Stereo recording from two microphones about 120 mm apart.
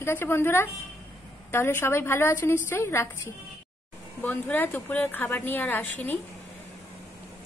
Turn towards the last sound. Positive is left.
turn(degrees=15)  # may be behind; listen again after turning